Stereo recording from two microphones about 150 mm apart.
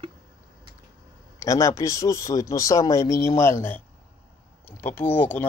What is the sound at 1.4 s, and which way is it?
Speech, 20° left (ahead or behind).